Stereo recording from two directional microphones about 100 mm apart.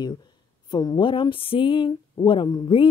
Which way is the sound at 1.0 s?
55° left (ahead or behind).